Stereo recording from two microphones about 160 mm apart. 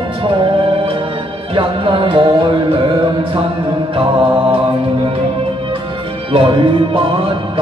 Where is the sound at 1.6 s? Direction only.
30° right (ahead or behind).